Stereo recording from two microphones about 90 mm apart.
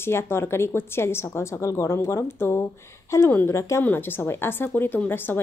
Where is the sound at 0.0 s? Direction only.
25° left (ahead or behind).